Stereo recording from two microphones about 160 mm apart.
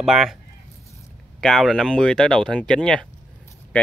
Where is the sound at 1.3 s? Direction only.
Centre (ahead or behind).